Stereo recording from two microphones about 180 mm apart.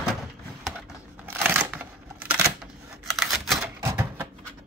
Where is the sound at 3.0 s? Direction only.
Centre (ahead or behind).